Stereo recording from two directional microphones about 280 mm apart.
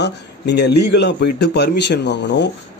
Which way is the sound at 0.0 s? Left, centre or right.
Left.